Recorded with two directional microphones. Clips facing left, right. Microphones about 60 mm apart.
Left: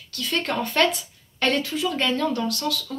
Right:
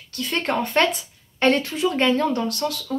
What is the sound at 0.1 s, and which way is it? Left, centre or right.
A woman's voice, right.